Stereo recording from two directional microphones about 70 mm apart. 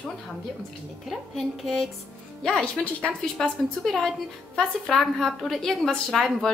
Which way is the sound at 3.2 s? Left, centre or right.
Centre.